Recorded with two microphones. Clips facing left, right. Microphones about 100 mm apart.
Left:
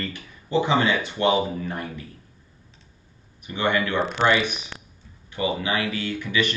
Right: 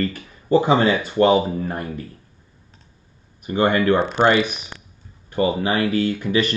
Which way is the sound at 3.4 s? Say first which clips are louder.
Right 7 dB; 40° right (ahead or behind).